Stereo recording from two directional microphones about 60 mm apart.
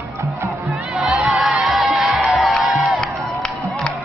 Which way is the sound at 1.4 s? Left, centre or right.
Centre.